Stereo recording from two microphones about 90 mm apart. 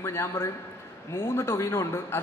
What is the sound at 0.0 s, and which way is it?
A man's voice, 30° left (ahead or behind).